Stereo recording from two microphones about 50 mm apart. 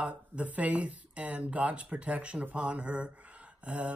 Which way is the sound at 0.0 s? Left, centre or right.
Right.